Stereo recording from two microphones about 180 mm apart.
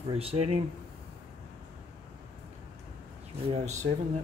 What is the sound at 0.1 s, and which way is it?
Speech, 35° right (ahead or behind).